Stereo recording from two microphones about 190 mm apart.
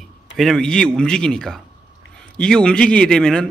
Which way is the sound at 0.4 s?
5° left (ahead or behind).